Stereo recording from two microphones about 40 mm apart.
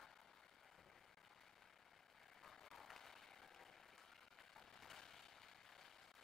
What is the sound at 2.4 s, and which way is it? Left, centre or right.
Applause, centre.